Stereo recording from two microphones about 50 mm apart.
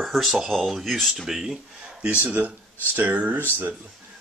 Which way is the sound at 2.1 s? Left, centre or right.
Right.